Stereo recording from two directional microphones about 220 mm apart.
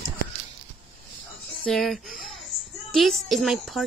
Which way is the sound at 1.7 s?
Centre (ahead or behind).